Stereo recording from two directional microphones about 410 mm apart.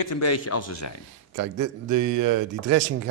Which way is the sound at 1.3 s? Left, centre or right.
Right.